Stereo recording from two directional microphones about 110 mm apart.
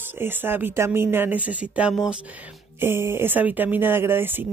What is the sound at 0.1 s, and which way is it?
Speech, 20° right (ahead or behind).